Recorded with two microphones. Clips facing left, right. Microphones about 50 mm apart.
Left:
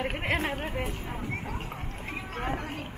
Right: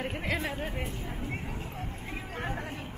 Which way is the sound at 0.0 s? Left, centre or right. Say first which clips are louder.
Left 3 dB; left.